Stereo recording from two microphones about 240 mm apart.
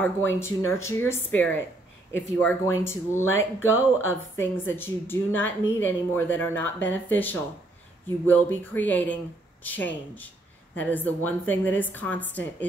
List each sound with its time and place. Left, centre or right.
0.0 s a woman's voice: centre
3.3 s speech: left
4.1 s a woman's voice: centre